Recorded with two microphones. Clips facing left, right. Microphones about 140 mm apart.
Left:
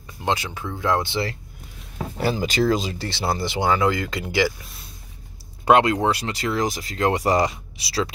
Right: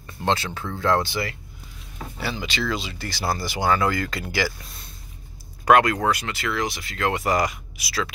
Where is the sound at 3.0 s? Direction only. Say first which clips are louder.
Left 2 dB; 25° left (ahead or behind).